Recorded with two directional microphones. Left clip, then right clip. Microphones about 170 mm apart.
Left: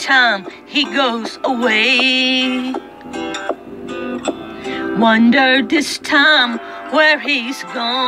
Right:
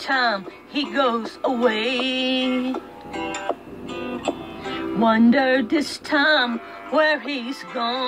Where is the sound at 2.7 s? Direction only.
30° left (ahead or behind).